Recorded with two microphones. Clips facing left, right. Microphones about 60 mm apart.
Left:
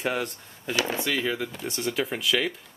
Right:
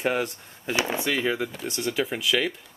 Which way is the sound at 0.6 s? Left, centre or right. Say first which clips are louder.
Right 1 dB; right.